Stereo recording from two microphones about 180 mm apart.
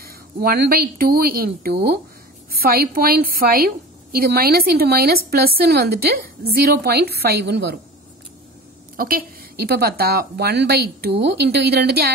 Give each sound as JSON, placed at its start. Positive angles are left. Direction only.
{"t": 0.0, "sound": "a woman's voice", "side_deg": -55}
{"t": 8.9, "sound": "a woman's voice", "side_deg": -55}